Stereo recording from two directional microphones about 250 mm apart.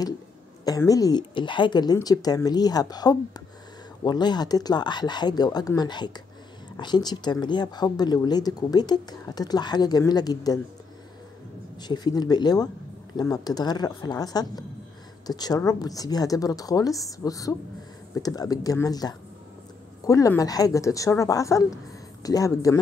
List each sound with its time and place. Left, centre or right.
0.7 s speech: centre
11.8 s speech: centre